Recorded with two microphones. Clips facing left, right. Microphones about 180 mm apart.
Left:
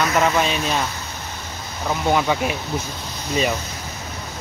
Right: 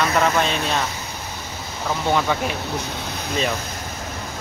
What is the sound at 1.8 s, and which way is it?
Speech, 10° left (ahead or behind).